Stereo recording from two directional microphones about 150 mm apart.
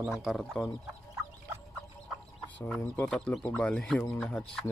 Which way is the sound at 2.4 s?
10° left (ahead or behind).